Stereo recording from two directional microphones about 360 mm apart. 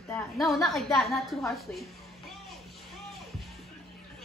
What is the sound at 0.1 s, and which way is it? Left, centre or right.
A woman's voice, centre.